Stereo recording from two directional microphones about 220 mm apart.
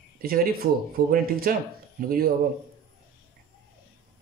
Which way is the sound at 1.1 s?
40° right (ahead or behind).